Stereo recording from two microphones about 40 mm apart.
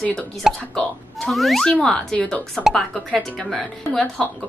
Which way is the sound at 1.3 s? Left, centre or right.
Centre.